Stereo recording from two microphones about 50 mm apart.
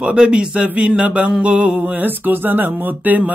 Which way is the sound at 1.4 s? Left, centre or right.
Right.